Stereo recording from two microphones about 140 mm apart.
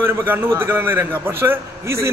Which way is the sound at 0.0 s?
15° right (ahead or behind).